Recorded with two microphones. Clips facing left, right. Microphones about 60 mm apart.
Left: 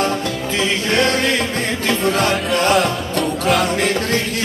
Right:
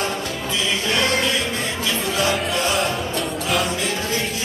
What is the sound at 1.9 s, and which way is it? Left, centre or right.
Music, left.